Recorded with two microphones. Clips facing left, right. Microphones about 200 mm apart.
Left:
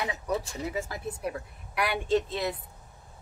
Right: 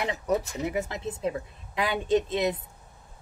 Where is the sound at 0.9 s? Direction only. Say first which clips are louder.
Right 3 dB; 20° right (ahead or behind).